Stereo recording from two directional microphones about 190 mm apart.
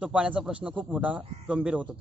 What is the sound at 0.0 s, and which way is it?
A man's voice, 5° right (ahead or behind).